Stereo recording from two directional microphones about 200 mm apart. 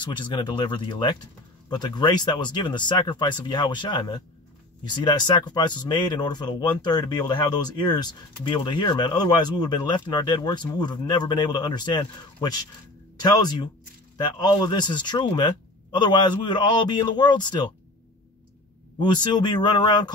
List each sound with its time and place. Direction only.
0.0 s speech: 25° left (ahead or behind)
18.9 s speech: 20° left (ahead or behind)